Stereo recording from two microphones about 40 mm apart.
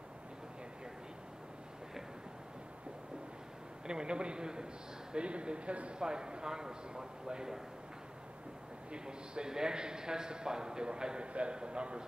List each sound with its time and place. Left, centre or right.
3.8 s speech: right
8.9 s speech: right